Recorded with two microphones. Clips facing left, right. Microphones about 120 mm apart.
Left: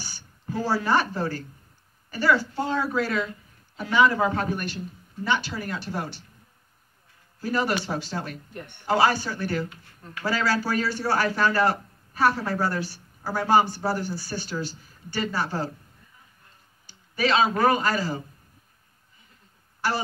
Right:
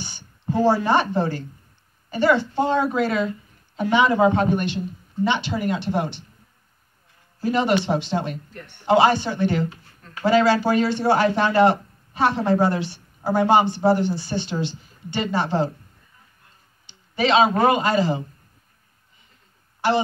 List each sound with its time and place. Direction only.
0.0 s a sound: 20° right (ahead or behind)
0.7 s a man's voice: 20° right (ahead or behind)
7.3 s a man's voice: 20° right (ahead or behind)
17.1 s a man's voice: 20° right (ahead or behind)